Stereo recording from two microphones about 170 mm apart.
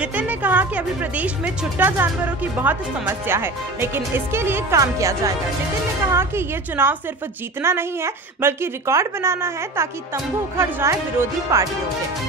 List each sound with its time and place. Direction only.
0.0 s a woman's voice: 10° right (ahead or behind)